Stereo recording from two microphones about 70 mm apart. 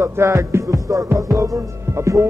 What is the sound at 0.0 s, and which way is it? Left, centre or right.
Music, right.